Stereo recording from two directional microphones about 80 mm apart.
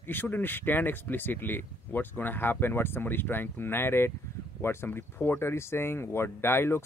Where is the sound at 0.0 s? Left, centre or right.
Left.